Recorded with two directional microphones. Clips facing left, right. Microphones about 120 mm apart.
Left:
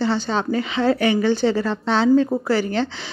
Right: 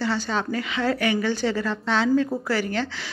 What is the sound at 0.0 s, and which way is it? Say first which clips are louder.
A woman's voice: left 4 dB; 25° left (ahead or behind).